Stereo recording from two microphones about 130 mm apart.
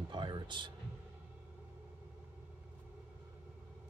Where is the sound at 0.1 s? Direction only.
40° right (ahead or behind).